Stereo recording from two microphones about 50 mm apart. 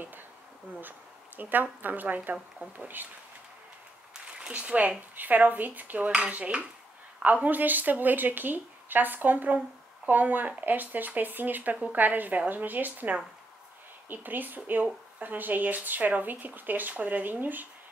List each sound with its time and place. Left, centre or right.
0.7 s speech: right
4.3 s speech: right